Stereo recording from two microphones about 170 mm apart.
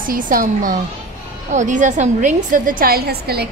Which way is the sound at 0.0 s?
55° right (ahead or behind).